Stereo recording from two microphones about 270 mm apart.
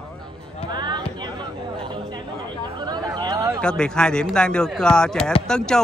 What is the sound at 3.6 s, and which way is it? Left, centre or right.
Speech, centre.